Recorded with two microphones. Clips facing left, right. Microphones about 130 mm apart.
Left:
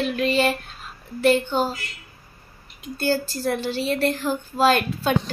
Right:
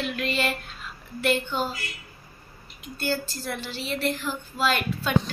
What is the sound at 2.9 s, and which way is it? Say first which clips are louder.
A woman's voice: left 5 dB; 40° left (ahead or behind).